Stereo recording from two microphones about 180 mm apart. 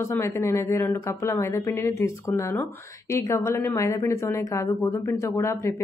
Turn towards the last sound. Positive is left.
turn(degrees=15)  # may be behind; listen again after turning